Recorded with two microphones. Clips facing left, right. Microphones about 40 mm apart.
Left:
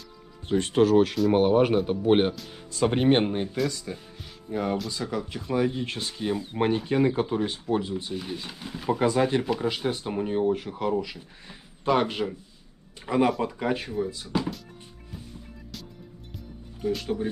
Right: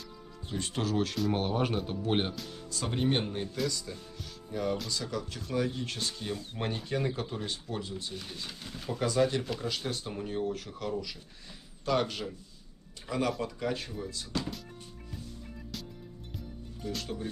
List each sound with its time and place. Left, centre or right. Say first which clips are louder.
0.5 s speech: left 12 dB; left
3.6 s speech: left 5 dB; left
16.8 s speech: left 9 dB; centre